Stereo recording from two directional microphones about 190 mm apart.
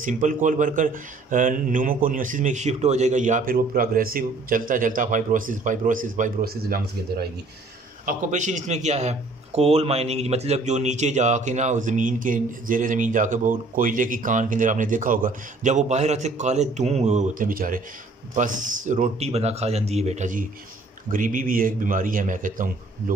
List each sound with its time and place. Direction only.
0.0 s speech: 40° right (ahead or behind)
8.0 s a man's voice: 40° right (ahead or behind)